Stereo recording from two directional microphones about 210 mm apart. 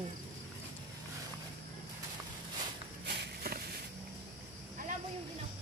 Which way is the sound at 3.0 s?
55° right (ahead or behind).